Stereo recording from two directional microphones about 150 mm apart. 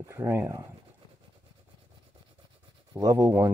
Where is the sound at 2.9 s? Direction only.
20° right (ahead or behind).